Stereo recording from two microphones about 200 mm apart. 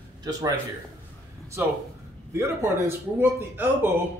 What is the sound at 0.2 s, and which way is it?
Speech, 20° right (ahead or behind).